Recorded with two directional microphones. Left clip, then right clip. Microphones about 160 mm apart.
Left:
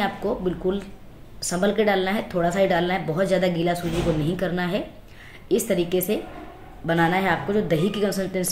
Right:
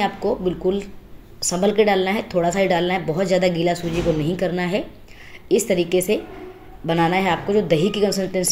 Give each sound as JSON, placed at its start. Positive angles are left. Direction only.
{"t": 0.0, "sound": "speech", "side_deg": -15}